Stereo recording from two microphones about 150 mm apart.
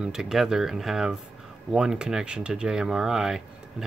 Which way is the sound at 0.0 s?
5° right (ahead or behind).